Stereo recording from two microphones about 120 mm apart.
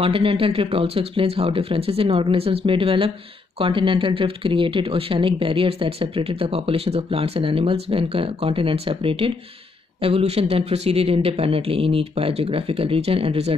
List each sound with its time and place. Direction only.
0.0 s speech: 50° right (ahead or behind)